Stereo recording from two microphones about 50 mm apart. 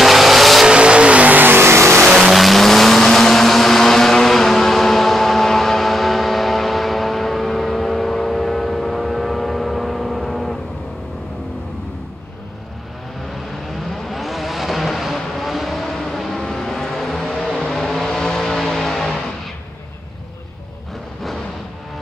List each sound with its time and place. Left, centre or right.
0.0 s vehicle: centre
0.7 s vehicle: centre; by 1.6 s right
1.6 s vehicle: right
2.0 s vehicle: centre
13.7 s vehicle: centre